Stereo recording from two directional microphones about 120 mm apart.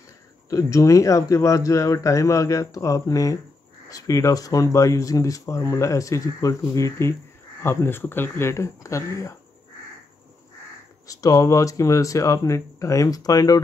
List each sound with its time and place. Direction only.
0.5 s speech: 30° left (ahead or behind)
11.1 s speech: 30° left (ahead or behind)